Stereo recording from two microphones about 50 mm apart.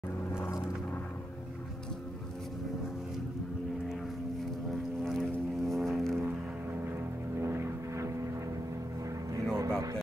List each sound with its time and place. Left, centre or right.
5.1 s vehicle: centre
6.8 s vehicle: right